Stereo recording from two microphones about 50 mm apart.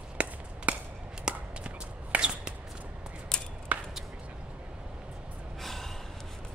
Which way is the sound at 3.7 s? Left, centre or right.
Right.